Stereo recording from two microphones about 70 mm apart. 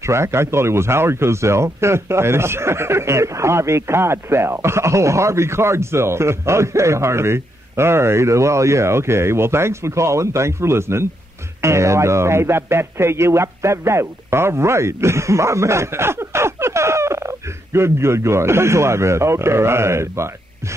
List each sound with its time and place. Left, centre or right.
0.0 s speech: right